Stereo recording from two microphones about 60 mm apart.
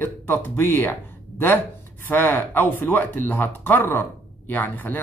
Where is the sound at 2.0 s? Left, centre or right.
Left.